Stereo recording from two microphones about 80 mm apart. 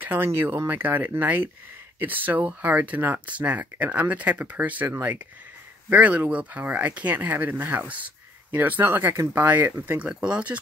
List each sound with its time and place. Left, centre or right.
0.0 s speech: right